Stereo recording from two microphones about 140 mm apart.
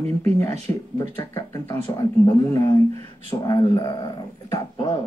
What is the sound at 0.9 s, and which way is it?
Speech, 25° left (ahead or behind).